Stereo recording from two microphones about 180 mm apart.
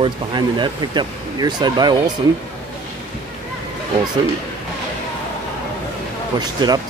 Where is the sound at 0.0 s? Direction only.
25° right (ahead or behind).